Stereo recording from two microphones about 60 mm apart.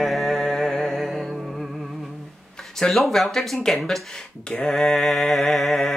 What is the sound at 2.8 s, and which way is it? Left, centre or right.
Speech, centre.